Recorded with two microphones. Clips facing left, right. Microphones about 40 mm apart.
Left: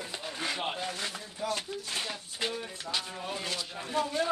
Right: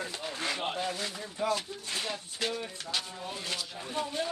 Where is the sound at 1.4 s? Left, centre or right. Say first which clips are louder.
Right 4 dB; right.